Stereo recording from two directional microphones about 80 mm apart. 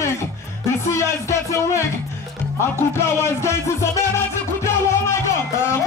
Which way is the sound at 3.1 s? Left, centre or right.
Left.